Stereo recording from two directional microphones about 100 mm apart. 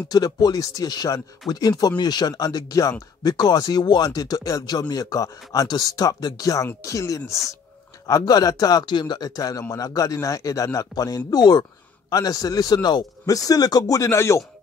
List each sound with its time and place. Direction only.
0.1 s speech: 40° left (ahead or behind)